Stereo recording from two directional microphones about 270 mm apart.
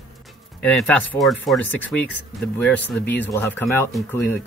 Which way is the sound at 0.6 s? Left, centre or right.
Centre.